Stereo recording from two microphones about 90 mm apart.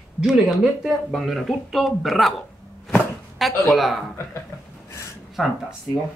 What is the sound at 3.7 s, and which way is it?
Speech, centre (ahead or behind).